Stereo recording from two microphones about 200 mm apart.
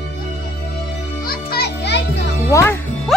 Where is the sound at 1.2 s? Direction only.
50° left (ahead or behind).